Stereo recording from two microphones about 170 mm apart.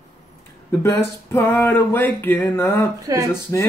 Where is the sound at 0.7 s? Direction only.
15° left (ahead or behind).